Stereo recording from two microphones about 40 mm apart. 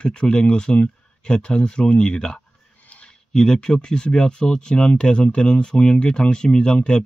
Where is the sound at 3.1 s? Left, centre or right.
Centre.